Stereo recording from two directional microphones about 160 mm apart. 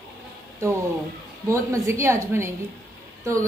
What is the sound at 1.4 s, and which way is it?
A woman's voice, 20° right (ahead or behind).